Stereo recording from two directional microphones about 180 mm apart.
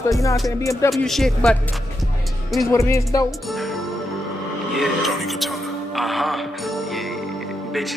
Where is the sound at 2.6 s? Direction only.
15° left (ahead or behind).